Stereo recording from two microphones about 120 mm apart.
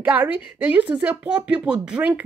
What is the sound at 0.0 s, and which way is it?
A woman's voice, 15° right (ahead or behind).